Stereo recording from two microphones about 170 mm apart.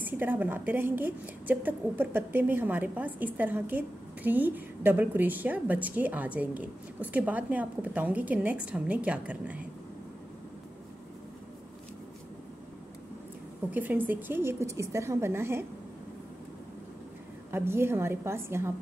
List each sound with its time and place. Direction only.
0.0 s a woman's voice: 10° right (ahead or behind)
13.7 s a woman's voice: 10° right (ahead or behind)
17.5 s a woman's voice: 15° right (ahead or behind)